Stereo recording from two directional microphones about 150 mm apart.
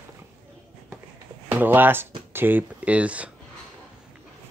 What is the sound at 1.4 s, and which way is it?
Speech, 10° right (ahead or behind).